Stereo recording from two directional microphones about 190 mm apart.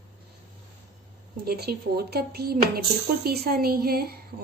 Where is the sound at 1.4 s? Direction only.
55° right (ahead or behind).